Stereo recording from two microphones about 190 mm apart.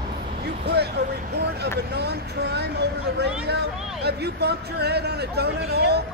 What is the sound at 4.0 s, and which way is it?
Speech, 60° right (ahead or behind).